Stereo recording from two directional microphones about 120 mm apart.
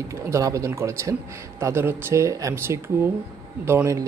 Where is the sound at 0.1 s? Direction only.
25° right (ahead or behind).